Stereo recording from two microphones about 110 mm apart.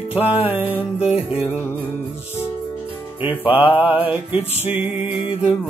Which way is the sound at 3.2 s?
15° right (ahead or behind).